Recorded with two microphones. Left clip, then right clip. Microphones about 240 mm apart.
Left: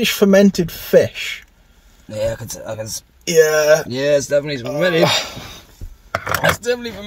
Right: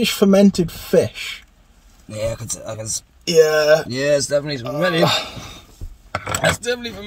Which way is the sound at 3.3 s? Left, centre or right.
Centre.